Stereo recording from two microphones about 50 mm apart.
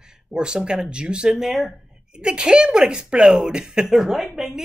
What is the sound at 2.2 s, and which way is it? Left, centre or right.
Speech, centre.